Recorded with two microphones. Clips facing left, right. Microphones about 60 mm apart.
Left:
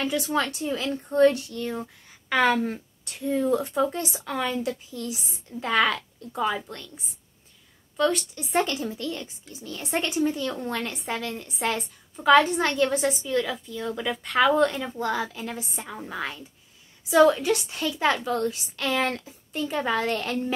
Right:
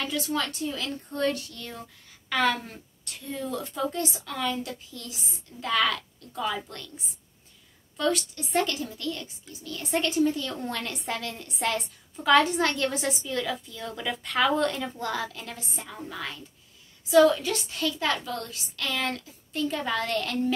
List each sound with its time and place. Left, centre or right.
0.0 s a woman's voice: left
8.0 s a woman's voice: centre
8.5 s a woman's voice: left
10.7 s a woman's voice: centre
15.4 s a woman's voice: centre